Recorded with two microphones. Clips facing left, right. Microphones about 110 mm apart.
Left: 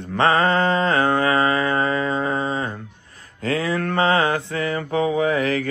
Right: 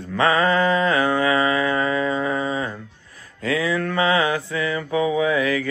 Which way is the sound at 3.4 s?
45° left (ahead or behind).